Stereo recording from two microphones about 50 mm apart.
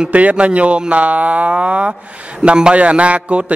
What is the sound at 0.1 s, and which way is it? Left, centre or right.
Speech, right.